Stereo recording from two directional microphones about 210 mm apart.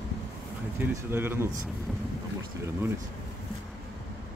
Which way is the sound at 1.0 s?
10° right (ahead or behind).